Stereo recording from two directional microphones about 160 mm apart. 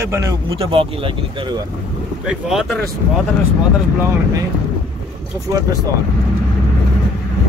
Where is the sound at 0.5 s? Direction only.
35° right (ahead or behind).